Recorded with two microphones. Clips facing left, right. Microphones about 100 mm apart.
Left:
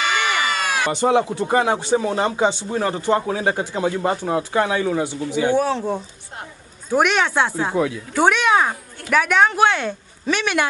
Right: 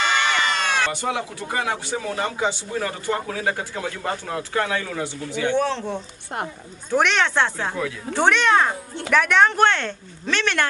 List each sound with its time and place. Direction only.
0.0 s a sound: 10° left (ahead or behind)
0.9 s speech: 25° left (ahead or behind)
5.5 s speech: 10° left (ahead or behind)